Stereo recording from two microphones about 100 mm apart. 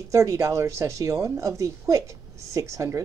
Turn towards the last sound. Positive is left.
turn(degrees=-30)  # may be behind; listen again after turning